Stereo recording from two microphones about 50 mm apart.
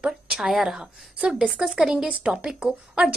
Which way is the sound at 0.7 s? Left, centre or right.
Centre.